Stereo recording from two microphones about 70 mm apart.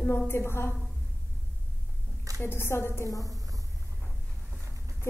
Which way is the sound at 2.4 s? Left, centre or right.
Left.